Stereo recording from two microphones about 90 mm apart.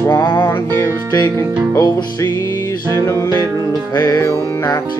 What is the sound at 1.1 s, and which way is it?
Speech, 40° left (ahead or behind).